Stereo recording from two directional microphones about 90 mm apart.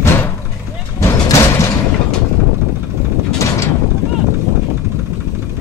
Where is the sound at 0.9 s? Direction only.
35° left (ahead or behind).